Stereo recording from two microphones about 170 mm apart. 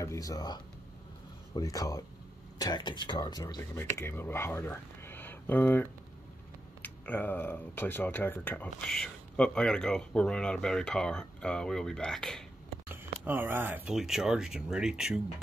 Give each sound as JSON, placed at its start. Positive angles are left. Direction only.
{"t": 0.0, "sound": "speech", "side_deg": 20}
{"t": 12.8, "sound": "speech", "side_deg": -10}